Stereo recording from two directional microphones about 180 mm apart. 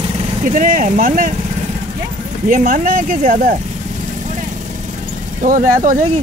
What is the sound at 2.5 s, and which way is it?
Speech, 50° right (ahead or behind).